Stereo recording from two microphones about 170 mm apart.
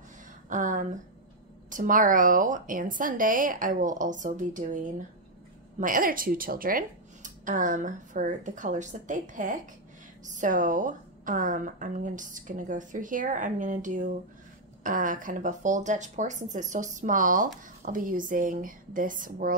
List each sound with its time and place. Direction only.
0.5 s a woman's voice: 50° right (ahead or behind)